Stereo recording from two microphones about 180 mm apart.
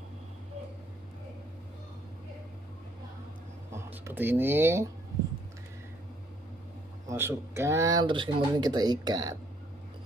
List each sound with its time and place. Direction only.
3.7 s speech: 10° right (ahead or behind)
7.1 s speech: 15° right (ahead or behind)